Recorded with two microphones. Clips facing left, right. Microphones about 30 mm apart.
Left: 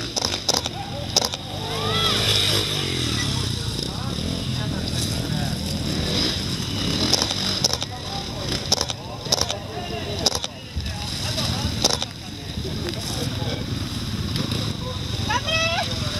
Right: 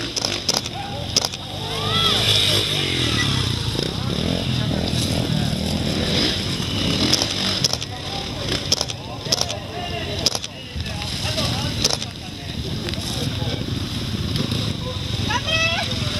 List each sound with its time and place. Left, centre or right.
1.7 s vehicle: centre
11.3 s vehicle: centre
14.3 s a sound: centre